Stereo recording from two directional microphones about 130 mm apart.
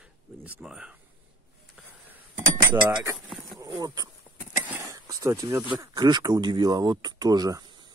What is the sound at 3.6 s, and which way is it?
Speech, 30° right (ahead or behind).